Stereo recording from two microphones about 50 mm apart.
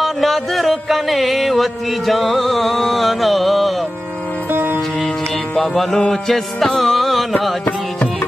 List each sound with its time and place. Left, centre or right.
0.0 s music: centre
4.5 s music: right
5.6 s music: centre